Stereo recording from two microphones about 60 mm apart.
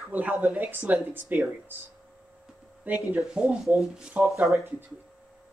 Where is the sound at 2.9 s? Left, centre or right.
Right.